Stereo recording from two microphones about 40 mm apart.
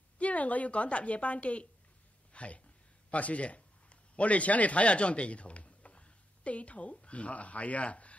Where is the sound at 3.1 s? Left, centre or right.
Left.